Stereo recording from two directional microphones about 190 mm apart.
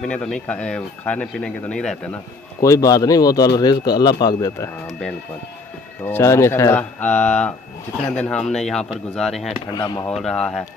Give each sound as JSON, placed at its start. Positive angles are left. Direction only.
{"t": 0.0, "sound": "speech", "side_deg": 5}
{"t": 2.6, "sound": "a man's voice", "side_deg": 20}
{"t": 6.0, "sound": "speech", "side_deg": 15}
{"t": 9.7, "sound": "a man's voice", "side_deg": 20}
{"t": 10.1, "sound": "speech", "side_deg": 5}